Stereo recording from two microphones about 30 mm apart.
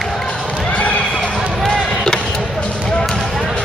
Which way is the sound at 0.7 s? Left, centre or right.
Left.